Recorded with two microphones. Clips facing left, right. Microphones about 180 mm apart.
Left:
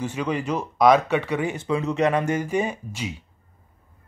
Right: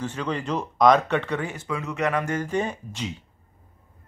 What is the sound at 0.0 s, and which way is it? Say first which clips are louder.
Speech: left 3 dB; 10° left (ahead or behind).